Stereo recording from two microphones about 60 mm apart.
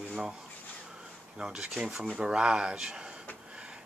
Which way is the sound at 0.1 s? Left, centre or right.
Centre.